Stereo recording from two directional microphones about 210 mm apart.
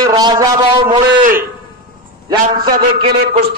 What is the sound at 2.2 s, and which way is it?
Speech, 20° right (ahead or behind).